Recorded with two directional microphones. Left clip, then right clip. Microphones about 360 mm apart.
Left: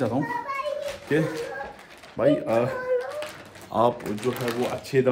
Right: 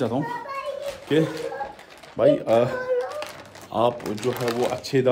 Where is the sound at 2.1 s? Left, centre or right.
Centre.